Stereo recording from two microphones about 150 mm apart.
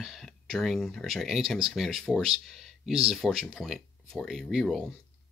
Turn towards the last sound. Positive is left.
turn(degrees=0)  # may be behind; listen again after turning